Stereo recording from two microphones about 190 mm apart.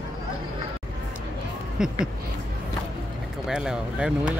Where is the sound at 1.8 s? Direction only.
5° right (ahead or behind).